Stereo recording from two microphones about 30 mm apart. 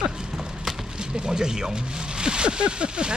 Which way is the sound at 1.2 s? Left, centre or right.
Right.